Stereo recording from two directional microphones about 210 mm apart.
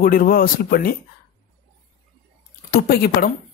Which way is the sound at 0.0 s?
45° left (ahead or behind).